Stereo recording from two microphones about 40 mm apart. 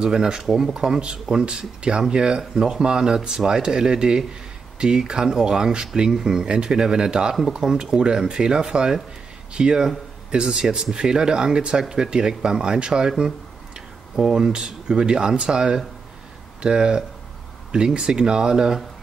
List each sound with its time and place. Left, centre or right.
0.0 s speech: centre
14.1 s speech: centre